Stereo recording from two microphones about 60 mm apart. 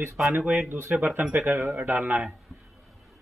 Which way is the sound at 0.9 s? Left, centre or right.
Right.